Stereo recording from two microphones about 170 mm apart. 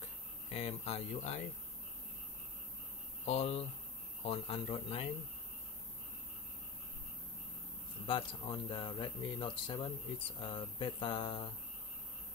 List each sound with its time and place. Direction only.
0.5 s speech: 40° left (ahead or behind)
3.3 s speech: 40° left (ahead or behind)
8.1 s speech: 30° left (ahead or behind)